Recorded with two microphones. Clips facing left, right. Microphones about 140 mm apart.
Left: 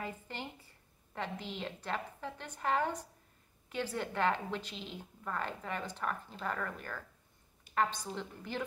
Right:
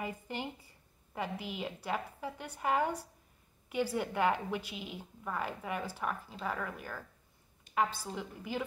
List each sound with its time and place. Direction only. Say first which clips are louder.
0.0 s a woman's voice: right 3 dB; 15° right (ahead or behind)